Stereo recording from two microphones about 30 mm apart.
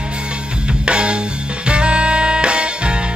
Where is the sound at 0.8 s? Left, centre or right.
Right.